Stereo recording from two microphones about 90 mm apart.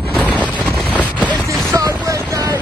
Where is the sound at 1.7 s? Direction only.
40° right (ahead or behind).